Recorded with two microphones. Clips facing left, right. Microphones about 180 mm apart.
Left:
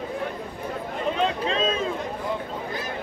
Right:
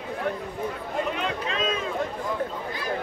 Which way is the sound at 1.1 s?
30° left (ahead or behind).